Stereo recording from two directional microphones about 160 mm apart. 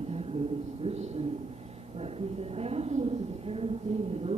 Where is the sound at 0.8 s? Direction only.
45° right (ahead or behind).